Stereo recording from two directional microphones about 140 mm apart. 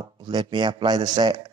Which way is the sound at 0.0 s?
30° right (ahead or behind).